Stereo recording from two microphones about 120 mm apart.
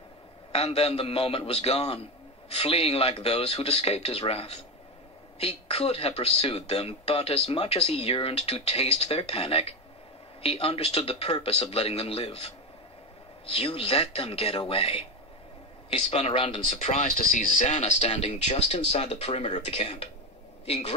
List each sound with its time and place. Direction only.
0.5 s speech: 55° left (ahead or behind)
16.7 s speech: 80° left; by 19.2 s 60° left (ahead or behind)
19.2 s a man's voice: 50° left (ahead or behind)